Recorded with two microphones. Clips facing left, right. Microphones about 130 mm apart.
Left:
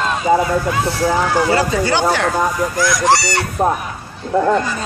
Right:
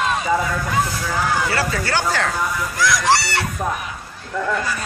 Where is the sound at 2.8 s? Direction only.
50° left (ahead or behind).